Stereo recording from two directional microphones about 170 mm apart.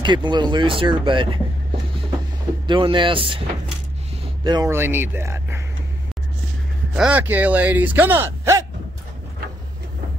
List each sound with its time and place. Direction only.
0.0 s speech: 25° right (ahead or behind)
2.6 s speech: 30° right (ahead or behind)
4.5 s speech: 25° right (ahead or behind)
4.7 s speech: 15° right (ahead or behind)
7.0 s speech: 10° right (ahead or behind)